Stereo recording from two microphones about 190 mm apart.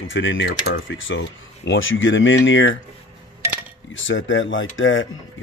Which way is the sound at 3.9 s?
90° left.